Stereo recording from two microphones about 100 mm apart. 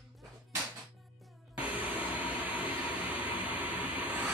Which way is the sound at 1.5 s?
15° right (ahead or behind).